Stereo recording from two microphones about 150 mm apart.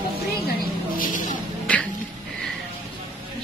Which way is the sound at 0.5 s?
65° left (ahead or behind).